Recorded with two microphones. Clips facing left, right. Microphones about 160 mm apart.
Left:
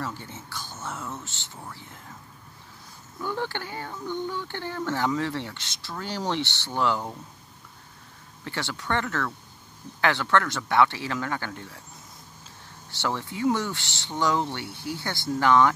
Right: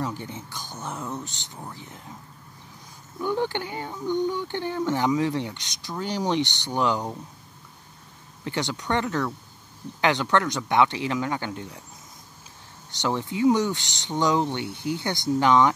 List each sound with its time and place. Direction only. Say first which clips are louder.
0.0 s speech: right 4 dB; 15° right (ahead or behind)
3.2 s speech: right 5 dB; 15° right (ahead or behind)
8.5 s speech: right 3 dB; 20° right (ahead or behind)
12.9 s speech: right 3 dB; 15° right (ahead or behind)